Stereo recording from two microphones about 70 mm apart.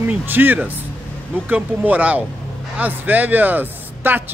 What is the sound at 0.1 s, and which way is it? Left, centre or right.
Speech, right.